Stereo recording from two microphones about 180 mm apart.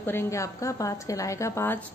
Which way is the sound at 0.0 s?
15° left (ahead or behind).